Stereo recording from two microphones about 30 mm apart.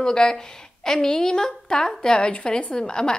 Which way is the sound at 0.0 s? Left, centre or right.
Left.